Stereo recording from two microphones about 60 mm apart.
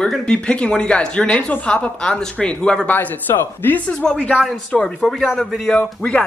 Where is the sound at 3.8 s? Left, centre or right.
Centre.